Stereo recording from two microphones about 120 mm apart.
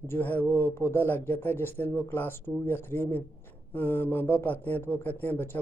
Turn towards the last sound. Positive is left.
turn(degrees=15)  # may be behind; listen again after turning